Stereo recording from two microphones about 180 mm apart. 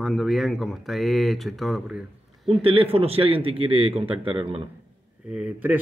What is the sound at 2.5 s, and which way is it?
A man's voice, 30° right (ahead or behind).